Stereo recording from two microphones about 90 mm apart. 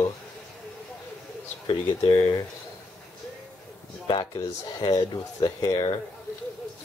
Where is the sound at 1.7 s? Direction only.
65° left (ahead or behind).